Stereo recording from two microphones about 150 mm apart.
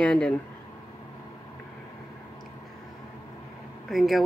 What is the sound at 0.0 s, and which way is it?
Speech, 5° left (ahead or behind).